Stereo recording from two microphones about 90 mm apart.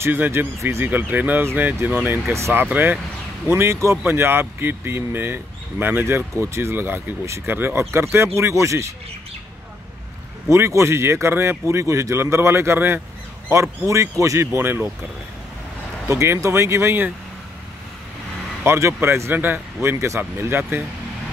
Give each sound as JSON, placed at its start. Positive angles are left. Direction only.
{"t": 0.0, "sound": "speech", "side_deg": -25}
{"t": 0.8, "sound": "speech", "side_deg": -20}
{"t": 10.5, "sound": "speech", "side_deg": -30}
{"t": 16.1, "sound": "speech", "side_deg": -30}
{"t": 18.6, "sound": "speech", "side_deg": -30}